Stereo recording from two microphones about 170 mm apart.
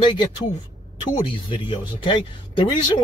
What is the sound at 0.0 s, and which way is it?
Speech, 25° left (ahead or behind).